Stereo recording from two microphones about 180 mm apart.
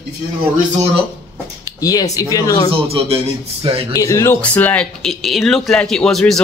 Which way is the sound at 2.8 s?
35° right (ahead or behind).